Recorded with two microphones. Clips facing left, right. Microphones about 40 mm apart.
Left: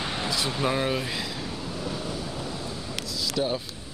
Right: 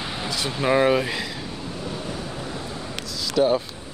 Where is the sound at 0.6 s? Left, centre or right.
Right.